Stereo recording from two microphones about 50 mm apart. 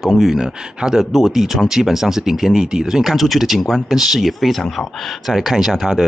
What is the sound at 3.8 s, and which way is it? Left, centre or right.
Speech, centre.